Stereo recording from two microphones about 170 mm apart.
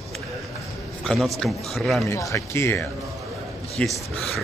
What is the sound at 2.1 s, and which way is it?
A man's voice, 20° left (ahead or behind).